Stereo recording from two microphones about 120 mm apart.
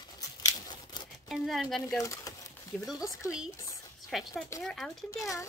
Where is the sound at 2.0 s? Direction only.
30° left (ahead or behind).